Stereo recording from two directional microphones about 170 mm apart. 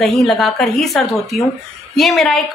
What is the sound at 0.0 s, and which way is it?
A woman's voice, centre (ahead or behind).